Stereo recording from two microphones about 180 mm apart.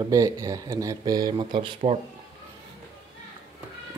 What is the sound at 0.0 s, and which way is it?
Speech, 20° right (ahead or behind).